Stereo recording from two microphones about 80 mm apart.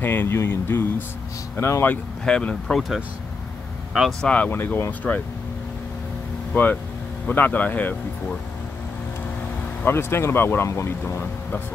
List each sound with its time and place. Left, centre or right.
0.0 s speech: left
2.2 s speech: centre
4.2 s speech: centre
4.5 s speech: left
5.1 s speech: centre
6.5 s speech: left
9.8 s speech: left